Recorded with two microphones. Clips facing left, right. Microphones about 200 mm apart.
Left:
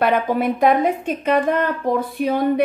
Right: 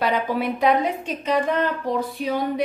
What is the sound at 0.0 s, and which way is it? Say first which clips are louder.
Speech: left 4 dB; 55° left (ahead or behind).